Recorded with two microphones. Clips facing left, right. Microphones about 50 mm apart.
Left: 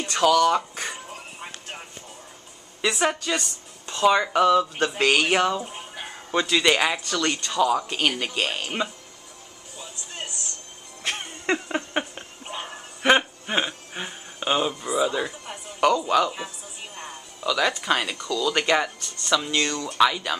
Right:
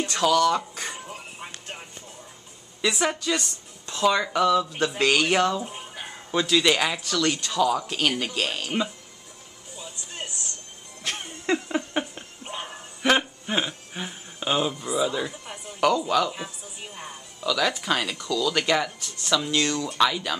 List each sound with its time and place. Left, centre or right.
0.2 s speech: left
0.6 s music: centre
2.8 s speech: centre
11.0 s music: centre
11.5 s a sound: centre
12.0 s a sound: centre
13.2 s speech: centre
16.4 s music: centre
17.8 s speech: centre
18.4 s speech: centre
18.9 s speech: centre